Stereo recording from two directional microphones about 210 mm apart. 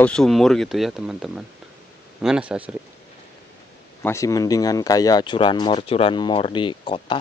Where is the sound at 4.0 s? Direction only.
15° left (ahead or behind).